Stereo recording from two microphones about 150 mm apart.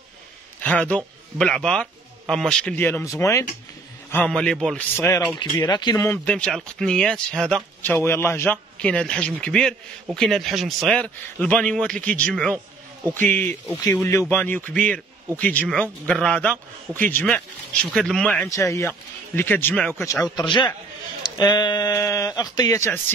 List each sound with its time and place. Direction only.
0.6 s speech: 10° left (ahead or behind)
4.1 s a man's voice: 10° left (ahead or behind)
4.9 s a man's voice: 20° left (ahead or behind)
5.4 s speech: 30° left (ahead or behind)
6.0 s a man's voice: 5° left (ahead or behind)
7.8 s a man's voice: 15° left (ahead or behind)
18.5 s a man's voice: 20° left (ahead or behind)
20.3 s speech: 30° left (ahead or behind)